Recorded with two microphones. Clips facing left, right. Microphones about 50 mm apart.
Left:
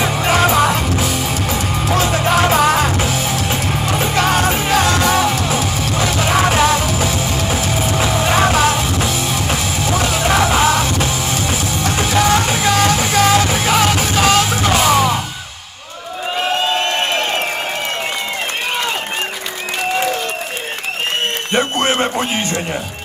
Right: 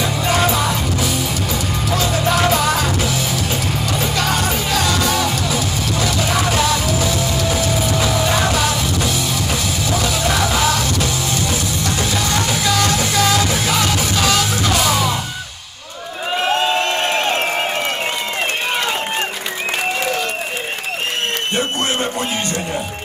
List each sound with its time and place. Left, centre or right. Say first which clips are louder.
0.0 s music: left 3 dB; left
21.5 s music: left 6 dB; left